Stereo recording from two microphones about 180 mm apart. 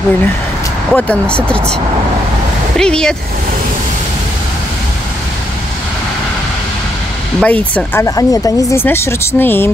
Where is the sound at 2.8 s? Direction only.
5° left (ahead or behind).